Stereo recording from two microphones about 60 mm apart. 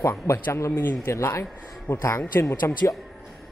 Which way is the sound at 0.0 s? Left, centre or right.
Left.